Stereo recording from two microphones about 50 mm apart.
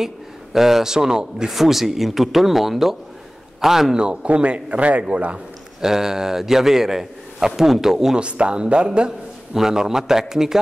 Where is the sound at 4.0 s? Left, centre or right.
Right.